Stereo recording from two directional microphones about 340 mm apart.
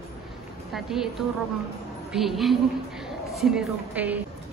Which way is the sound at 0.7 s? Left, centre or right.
Centre.